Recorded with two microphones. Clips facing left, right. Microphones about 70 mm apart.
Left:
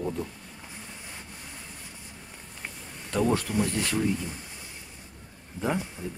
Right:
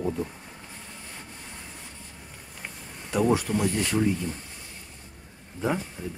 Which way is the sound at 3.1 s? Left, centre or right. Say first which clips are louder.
Right 2 dB; centre.